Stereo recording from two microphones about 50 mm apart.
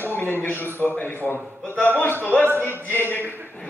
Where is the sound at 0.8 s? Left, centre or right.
Left.